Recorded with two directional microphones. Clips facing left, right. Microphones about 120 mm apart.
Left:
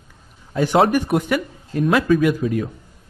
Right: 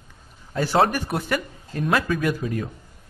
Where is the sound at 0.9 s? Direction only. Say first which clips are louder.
Left 7 dB; 15° left (ahead or behind).